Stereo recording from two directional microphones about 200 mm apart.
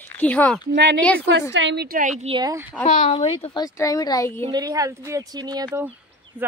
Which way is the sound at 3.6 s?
15° left (ahead or behind).